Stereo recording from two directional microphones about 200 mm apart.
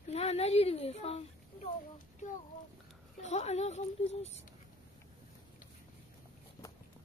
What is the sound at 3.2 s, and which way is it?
Speech, 35° left (ahead or behind).